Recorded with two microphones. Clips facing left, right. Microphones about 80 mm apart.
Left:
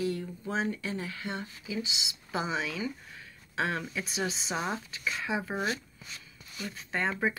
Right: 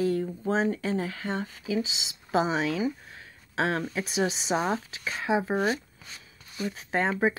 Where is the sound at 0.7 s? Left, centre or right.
Right.